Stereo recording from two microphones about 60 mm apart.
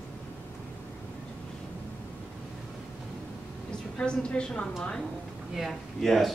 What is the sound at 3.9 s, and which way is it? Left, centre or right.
Speech, centre.